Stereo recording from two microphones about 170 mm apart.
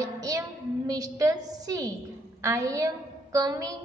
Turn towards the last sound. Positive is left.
turn(degrees=-20)  # may be behind; listen again after turning